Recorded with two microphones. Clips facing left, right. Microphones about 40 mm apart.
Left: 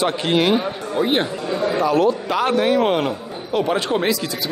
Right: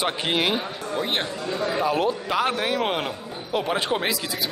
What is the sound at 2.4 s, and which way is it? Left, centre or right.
A man's voice, centre.